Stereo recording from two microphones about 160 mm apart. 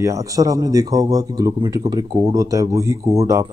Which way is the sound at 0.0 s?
20° right (ahead or behind).